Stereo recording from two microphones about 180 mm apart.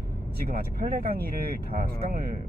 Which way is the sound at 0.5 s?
55° right (ahead or behind).